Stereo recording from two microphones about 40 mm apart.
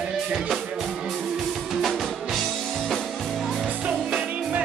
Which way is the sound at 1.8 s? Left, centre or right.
Centre.